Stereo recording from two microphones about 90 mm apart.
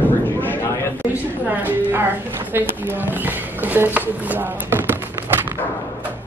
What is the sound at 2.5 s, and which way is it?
Speech, 20° right (ahead or behind).